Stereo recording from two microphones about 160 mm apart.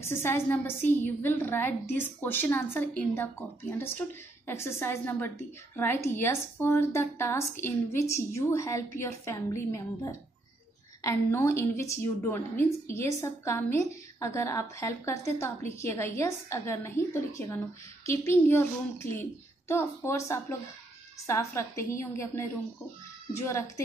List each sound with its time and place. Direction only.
0.0 s a woman's voice: 15° left (ahead or behind)